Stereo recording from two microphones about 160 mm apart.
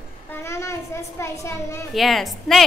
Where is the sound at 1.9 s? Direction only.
Centre (ahead or behind).